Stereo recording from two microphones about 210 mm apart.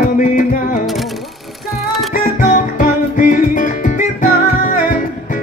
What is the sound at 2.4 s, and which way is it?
Music, 40° left (ahead or behind).